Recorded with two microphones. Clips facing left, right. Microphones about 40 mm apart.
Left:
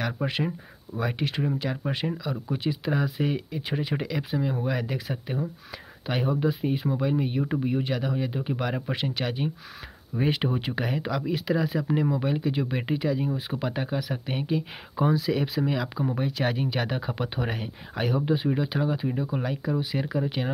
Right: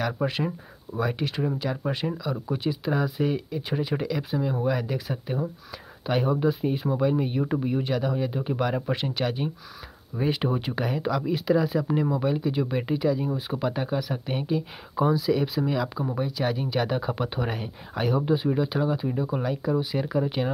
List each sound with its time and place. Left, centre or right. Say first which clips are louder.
0.0 s speech: right 2 dB; left
0.9 s speech: right 3 dB; right
1.2 s speech: even; left
6.0 s speech: right 2 dB; centre
10.1 s speech: even; left
10.4 s speech: right 1 dB; centre
16.2 s speech: right 2 dB; left; by 20.4 s centre